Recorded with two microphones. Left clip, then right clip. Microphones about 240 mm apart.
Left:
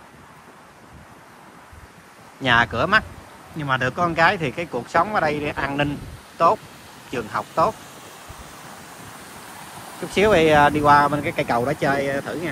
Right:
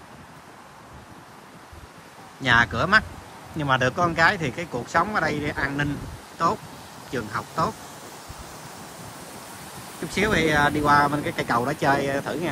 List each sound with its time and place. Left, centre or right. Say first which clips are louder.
2.4 s speech: left 2 dB; centre
10.1 s speech: left 6 dB; centre